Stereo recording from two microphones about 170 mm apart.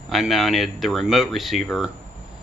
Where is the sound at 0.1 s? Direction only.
Centre (ahead or behind).